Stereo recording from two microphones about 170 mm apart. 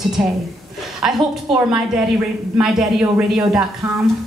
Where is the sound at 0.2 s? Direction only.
5° right (ahead or behind).